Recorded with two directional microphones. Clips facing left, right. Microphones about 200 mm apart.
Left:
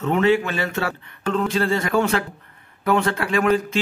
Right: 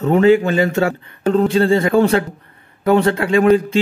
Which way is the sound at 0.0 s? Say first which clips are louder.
Right 6 dB; 35° right (ahead or behind).